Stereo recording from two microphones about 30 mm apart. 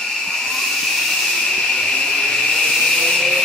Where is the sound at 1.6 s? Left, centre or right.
Centre.